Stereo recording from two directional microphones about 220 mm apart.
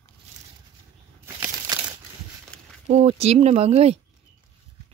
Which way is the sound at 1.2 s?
10° right (ahead or behind).